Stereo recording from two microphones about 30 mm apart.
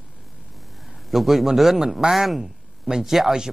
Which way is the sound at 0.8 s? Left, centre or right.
Centre.